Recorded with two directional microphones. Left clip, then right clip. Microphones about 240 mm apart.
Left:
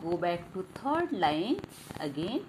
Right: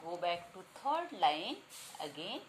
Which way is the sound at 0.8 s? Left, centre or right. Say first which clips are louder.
Left 4 dB; centre.